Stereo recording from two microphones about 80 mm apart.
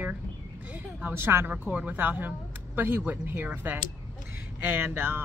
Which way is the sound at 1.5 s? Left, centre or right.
Centre.